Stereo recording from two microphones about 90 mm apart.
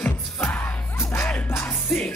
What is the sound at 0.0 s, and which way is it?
Music, 20° left (ahead or behind).